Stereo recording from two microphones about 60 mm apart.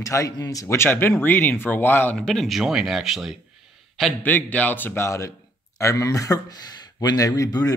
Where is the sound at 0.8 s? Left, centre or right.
Left.